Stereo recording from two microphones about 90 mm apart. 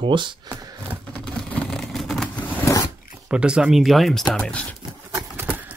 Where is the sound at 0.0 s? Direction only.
60° right (ahead or behind).